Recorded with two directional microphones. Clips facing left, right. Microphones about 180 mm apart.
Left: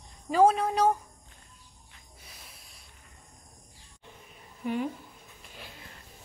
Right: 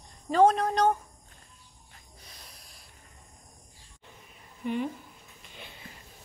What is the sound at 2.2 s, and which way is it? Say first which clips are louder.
Hiss: even; 5° left (ahead or behind).